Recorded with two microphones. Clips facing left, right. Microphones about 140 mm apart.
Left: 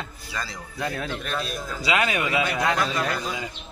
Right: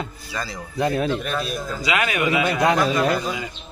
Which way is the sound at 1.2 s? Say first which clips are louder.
Right 4 dB; 5° right (ahead or behind).